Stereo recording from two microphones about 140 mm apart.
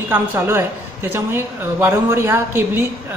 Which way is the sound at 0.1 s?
15° right (ahead or behind).